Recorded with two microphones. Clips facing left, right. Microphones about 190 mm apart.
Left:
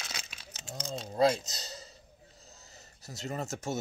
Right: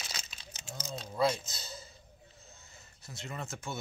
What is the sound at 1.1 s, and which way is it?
Speech, 35° left (ahead or behind).